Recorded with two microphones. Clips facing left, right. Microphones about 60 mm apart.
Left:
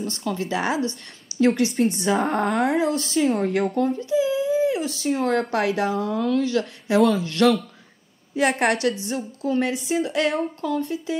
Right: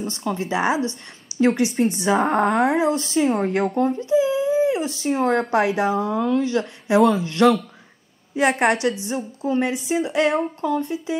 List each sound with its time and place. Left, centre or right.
0.0 s speech: right
5.6 s a woman's voice: centre
5.9 s speech: right
7.3 s a woman's voice: centre
8.7 s speech: right